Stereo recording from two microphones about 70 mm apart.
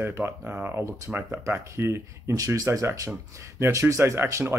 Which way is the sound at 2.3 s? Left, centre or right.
Right.